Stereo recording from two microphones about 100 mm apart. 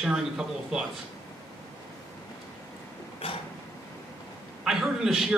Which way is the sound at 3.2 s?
70° left (ahead or behind).